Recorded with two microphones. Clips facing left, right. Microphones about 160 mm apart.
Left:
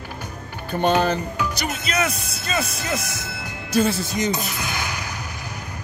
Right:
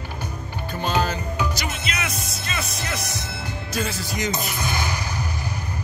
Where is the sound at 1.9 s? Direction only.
35° left (ahead or behind).